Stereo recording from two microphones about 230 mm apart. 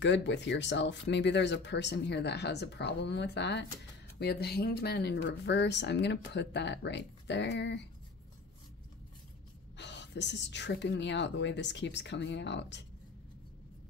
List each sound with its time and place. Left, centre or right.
0.0 s speech: left
9.8 s speech: left